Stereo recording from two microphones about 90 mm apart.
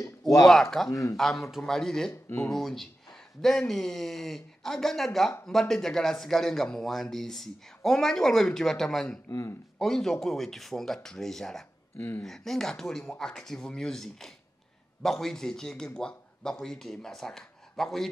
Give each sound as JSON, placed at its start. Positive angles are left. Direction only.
{"t": 0.5, "sound": "speech", "side_deg": 5}
{"t": 0.8, "sound": "speech", "side_deg": 40}
{"t": 1.1, "sound": "speech", "side_deg": 5}
{"t": 2.2, "sound": "speech", "side_deg": 20}
{"t": 2.5, "sound": "speech", "side_deg": 5}
{"t": 9.3, "sound": "speech", "side_deg": 40}
{"t": 9.8, "sound": "a man's voice", "side_deg": 5}